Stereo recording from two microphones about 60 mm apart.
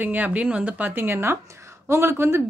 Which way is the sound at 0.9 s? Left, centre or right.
Right.